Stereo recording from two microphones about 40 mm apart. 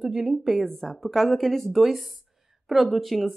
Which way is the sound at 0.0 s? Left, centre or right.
Centre.